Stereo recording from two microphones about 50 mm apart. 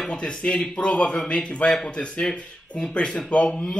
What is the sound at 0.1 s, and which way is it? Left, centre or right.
A man's voice, centre.